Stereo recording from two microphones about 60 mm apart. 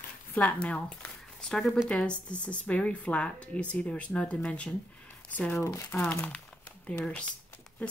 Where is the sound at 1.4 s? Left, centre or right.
Centre.